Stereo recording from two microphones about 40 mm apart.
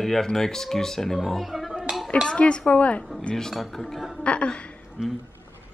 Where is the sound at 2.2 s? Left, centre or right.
Left.